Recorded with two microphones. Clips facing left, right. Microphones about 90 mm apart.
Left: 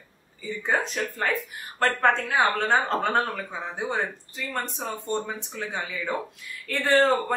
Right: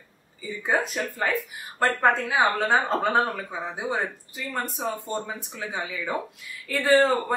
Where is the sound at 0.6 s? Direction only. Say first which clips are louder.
Right 1 dB; 5° right (ahead or behind).